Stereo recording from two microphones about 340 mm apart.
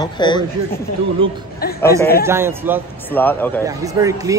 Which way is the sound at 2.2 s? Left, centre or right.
Centre.